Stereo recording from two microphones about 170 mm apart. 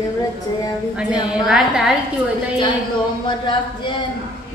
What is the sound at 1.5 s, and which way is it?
Speech, 5° right (ahead or behind).